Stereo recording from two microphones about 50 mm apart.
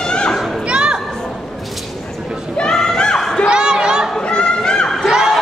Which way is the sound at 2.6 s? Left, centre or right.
Centre.